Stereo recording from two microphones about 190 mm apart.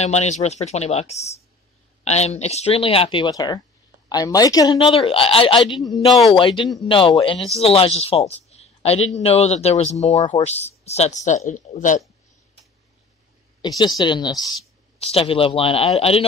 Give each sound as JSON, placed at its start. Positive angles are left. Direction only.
{"t": 0.0, "sound": "a woman's voice", "side_deg": 35}
{"t": 5.9, "sound": "speech", "side_deg": 0}
{"t": 6.3, "sound": "a woman's voice", "side_deg": 25}
{"t": 8.4, "sound": "a sound", "side_deg": 35}
{"t": 9.1, "sound": "speech", "side_deg": 35}
{"t": 13.6, "sound": "a woman's voice", "side_deg": 20}